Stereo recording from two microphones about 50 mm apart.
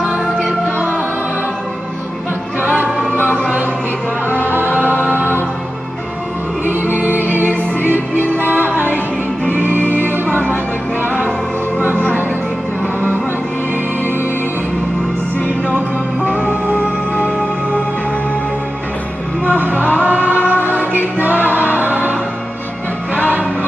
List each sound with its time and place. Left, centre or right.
2.6 s music: right
4.3 s music: left
4.6 s music: right
6.6 s music: right
10.2 s music: left
15.7 s music: left
19.4 s music: right
20.0 s choir: right
21.7 s music: right